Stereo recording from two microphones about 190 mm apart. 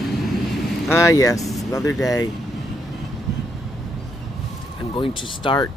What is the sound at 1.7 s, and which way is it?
Speech, 15° left (ahead or behind).